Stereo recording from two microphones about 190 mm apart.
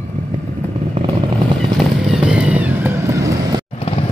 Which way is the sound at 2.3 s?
10° right (ahead or behind).